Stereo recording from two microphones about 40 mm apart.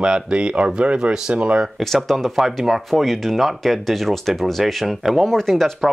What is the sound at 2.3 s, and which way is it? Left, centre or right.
Speech, centre.